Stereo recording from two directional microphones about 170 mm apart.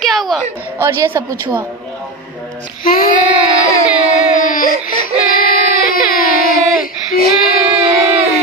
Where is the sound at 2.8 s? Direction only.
55° left (ahead or behind).